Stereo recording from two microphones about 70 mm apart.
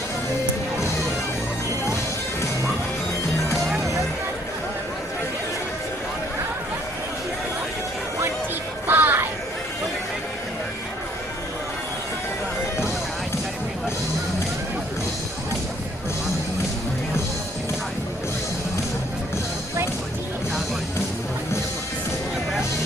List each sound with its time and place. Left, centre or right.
8.8 s music: right